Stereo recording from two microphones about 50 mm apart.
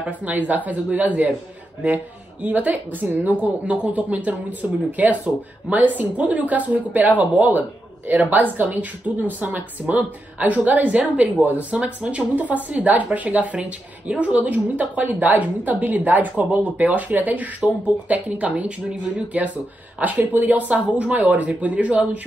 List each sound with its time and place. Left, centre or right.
0.2 s speech: right
2.4 s speech: right